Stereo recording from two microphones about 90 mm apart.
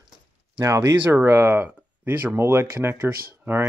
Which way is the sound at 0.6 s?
35° right (ahead or behind).